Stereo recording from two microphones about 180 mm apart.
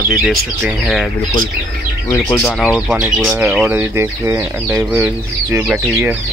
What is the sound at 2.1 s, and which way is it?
Speech, 15° left (ahead or behind).